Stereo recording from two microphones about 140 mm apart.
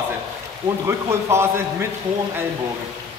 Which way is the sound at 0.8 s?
20° right (ahead or behind).